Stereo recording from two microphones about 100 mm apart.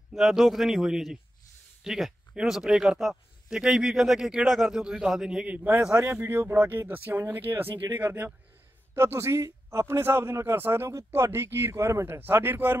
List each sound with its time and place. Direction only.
0.1 s a man's voice: centre (ahead or behind); by 12.7 s 20° right (ahead or behind)